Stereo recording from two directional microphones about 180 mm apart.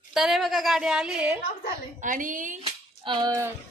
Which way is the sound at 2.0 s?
45° right (ahead or behind).